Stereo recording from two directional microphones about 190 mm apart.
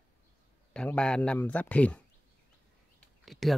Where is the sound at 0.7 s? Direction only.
5° left (ahead or behind).